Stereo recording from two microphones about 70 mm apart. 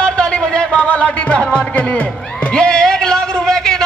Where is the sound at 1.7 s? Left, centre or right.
Centre.